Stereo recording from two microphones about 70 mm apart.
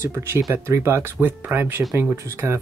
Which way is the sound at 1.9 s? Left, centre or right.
Right.